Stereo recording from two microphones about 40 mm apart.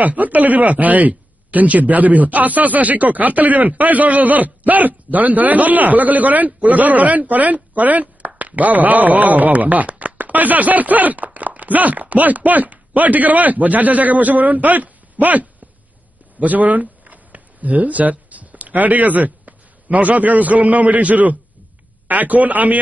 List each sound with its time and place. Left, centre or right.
0.0 s speech: right